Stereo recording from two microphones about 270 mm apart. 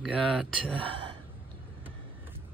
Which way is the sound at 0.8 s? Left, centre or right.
Centre.